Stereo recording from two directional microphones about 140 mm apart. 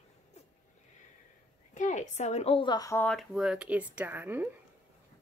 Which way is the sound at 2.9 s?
10° left (ahead or behind).